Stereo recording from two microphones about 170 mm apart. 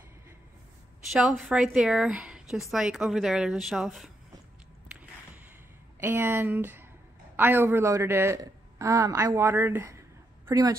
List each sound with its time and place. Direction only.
1.1 s a woman's voice: centre (ahead or behind)
5.9 s a woman's voice: 15° right (ahead or behind)